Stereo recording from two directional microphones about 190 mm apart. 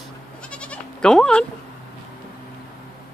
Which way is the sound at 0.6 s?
5° left (ahead or behind).